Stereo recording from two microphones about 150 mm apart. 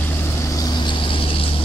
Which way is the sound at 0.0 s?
15° left (ahead or behind).